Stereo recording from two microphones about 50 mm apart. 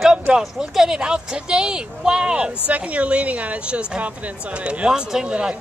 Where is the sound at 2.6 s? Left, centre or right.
Right.